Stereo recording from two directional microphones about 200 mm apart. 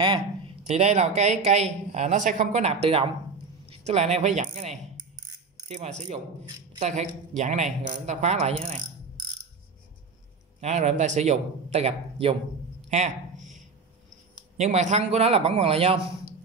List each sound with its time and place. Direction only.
0.7 s speech: 35° right (ahead or behind)
10.6 s speech: 35° right (ahead or behind)
12.8 s a sound: 35° right (ahead or behind)
14.6 s speech: 35° right (ahead or behind)